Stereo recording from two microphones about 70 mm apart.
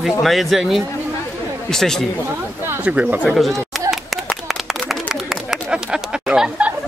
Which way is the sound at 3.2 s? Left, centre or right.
Centre.